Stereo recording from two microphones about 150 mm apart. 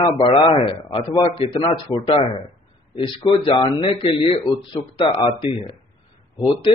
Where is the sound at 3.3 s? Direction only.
35° left (ahead or behind).